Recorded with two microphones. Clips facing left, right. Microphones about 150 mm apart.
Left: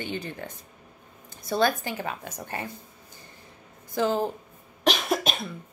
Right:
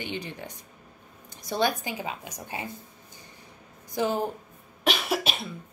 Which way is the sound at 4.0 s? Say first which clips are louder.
Left 2 dB; 15° right (ahead or behind).